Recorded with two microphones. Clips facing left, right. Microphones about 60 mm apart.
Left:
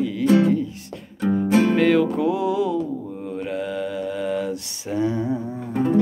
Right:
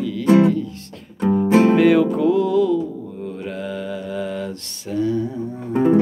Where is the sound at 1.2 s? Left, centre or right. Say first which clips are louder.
Right 4 dB; right.